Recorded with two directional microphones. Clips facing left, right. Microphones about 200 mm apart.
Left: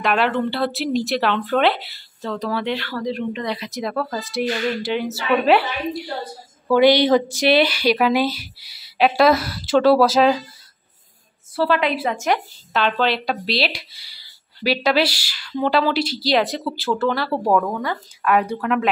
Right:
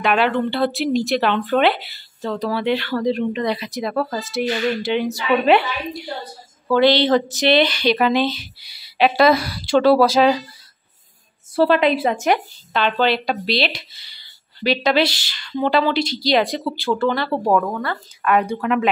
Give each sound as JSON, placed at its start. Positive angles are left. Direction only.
{"t": 0.0, "sound": "a woman's voice", "side_deg": 0}
{"t": 3.6, "sound": "a woman's voice", "side_deg": 0}
{"t": 11.5, "sound": "a woman's voice", "side_deg": -25}
{"t": 12.7, "sound": "a woman's voice", "side_deg": 0}